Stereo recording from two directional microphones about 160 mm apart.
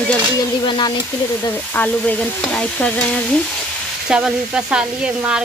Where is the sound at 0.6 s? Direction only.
25° left (ahead or behind).